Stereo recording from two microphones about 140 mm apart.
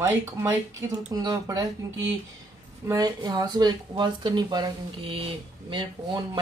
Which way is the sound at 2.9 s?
30° right (ahead or behind).